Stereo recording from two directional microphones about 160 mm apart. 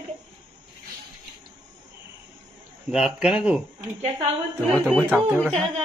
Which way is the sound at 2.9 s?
5° right (ahead or behind).